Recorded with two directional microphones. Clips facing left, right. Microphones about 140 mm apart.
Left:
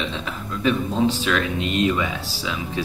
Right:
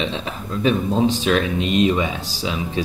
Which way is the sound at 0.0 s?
20° right (ahead or behind).